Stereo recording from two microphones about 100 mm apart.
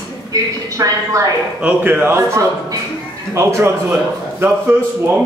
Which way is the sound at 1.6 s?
15° right (ahead or behind).